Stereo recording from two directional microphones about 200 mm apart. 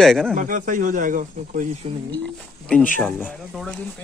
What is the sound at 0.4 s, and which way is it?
Speech, 40° right (ahead or behind).